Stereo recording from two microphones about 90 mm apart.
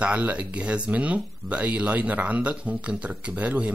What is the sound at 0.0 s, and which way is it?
Speech, 15° right (ahead or behind).